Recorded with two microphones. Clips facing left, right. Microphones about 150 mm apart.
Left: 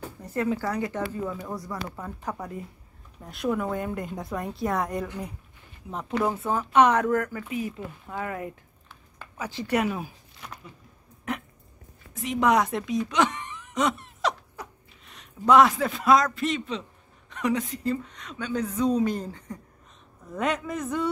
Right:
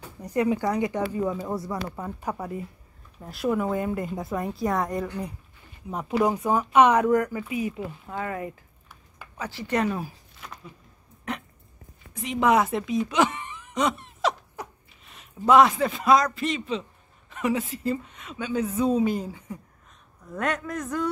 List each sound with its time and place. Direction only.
0.2 s a woman's voice: 15° right (ahead or behind)
9.4 s speech: 15° left (ahead or behind)
11.3 s dog: 5° left (ahead or behind)
12.1 s a woman's voice: centre (ahead or behind)